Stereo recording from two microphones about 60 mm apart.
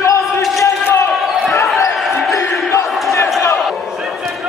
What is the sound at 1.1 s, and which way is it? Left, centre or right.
Basketball bounce, centre.